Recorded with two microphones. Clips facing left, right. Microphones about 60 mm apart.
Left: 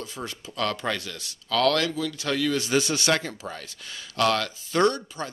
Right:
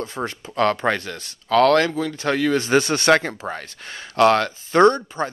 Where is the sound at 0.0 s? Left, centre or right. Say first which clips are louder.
Right 8 dB; right.